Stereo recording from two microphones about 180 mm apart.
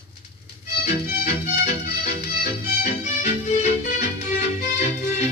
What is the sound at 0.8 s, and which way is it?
Music, 40° left (ahead or behind).